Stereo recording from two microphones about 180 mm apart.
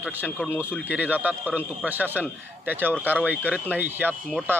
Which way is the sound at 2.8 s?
10° left (ahead or behind).